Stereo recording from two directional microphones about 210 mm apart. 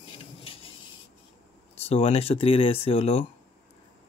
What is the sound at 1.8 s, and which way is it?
Speech, 30° left (ahead or behind).